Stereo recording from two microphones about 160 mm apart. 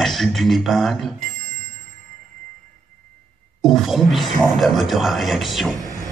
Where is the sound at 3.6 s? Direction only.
Centre (ahead or behind).